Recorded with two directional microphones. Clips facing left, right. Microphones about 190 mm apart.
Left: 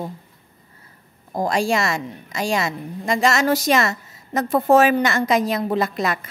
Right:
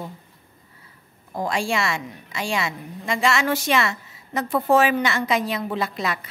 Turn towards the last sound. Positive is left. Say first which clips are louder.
# left 4 dB
turn(degrees=45)  # may be behind; listen again after turning